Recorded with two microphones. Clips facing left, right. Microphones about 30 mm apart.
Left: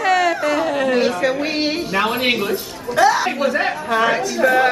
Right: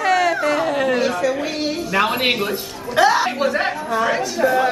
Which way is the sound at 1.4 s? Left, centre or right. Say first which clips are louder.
Left 2 dB; left.